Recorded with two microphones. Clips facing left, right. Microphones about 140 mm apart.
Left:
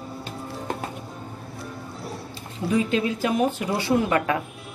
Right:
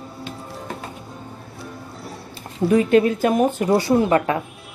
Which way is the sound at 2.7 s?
55° right (ahead or behind).